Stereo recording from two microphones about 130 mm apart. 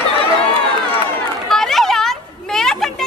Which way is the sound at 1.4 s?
5° left (ahead or behind).